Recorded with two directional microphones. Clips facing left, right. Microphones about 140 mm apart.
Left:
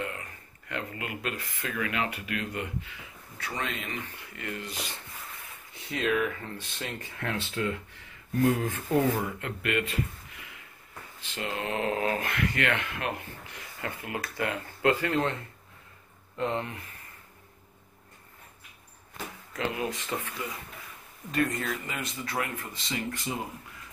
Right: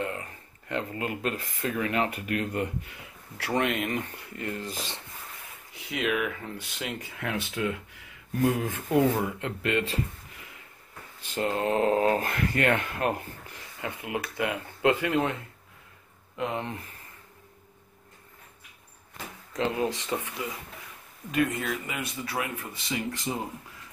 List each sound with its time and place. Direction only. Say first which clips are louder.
0.0 s speech: right 3 dB; 30° right (ahead or behind)
3.3 s speech: right 8 dB; 70° right (ahead or behind); by 5.0 s 30° right (ahead or behind)
5.9 s speech: left 1 dB; 10° right (ahead or behind); by 9.9 s 30° right (ahead or behind)
11.2 s speech: right 6 dB; 40° right (ahead or behind)
13.7 s speech: right 2 dB; 15° right (ahead or behind)
16.3 s speech: left 1 dB; 10° right (ahead or behind)
19.5 s speech: right 4 dB; 25° right (ahead or behind); by 22.9 s 5° right (ahead or behind)